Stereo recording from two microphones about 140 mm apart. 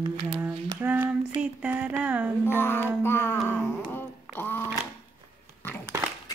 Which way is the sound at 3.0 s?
15° left (ahead or behind).